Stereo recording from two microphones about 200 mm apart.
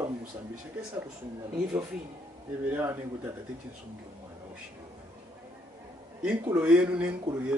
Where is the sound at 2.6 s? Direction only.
10° right (ahead or behind).